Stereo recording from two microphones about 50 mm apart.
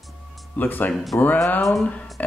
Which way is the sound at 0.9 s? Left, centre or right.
Centre.